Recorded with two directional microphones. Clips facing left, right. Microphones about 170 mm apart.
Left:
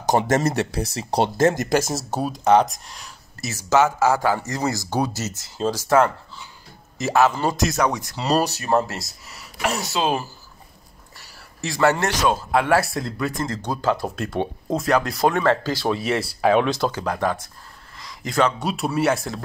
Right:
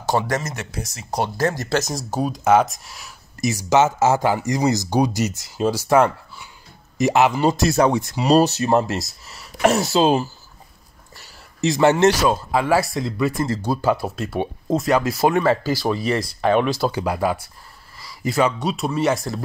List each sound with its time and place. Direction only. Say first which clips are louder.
0.0 s speech: left 2 dB; 20° left (ahead or behind)
0.4 s speech: left 8 dB; 35° left (ahead or behind)
1.8 s speech: even; 5° left (ahead or behind); by 7.5 s 15° right (ahead or behind)
7.5 s speech: right 4 dB; 30° right (ahead or behind)
11.6 s speech: right 5 dB; 20° right (ahead or behind)
12.2 s speech: right 1 dB; centre (ahead or behind)